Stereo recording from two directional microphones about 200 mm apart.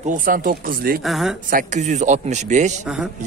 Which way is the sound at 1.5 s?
40° right (ahead or behind).